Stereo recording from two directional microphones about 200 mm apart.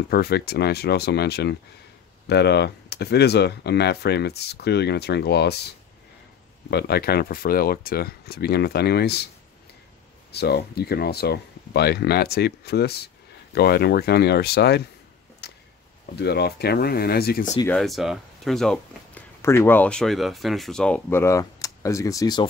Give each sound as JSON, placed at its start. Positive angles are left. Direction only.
{"t": 0.1, "sound": "speech", "side_deg": 50}
{"t": 6.7, "sound": "speech", "side_deg": 55}
{"t": 10.3, "sound": "speech", "side_deg": 55}
{"t": 15.4, "sound": "a sound", "side_deg": 55}
{"t": 16.2, "sound": "speech", "side_deg": 55}
{"t": 17.6, "sound": "speech", "side_deg": 0}